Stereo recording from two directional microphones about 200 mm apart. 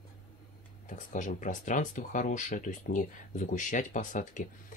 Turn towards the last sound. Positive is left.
turn(degrees=40)  # may be behind; listen again after turning